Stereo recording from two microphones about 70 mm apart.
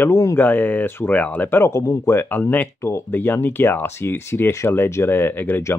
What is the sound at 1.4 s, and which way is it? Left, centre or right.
Speech, left.